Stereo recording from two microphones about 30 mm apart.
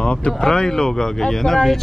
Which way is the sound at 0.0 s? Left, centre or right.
Left.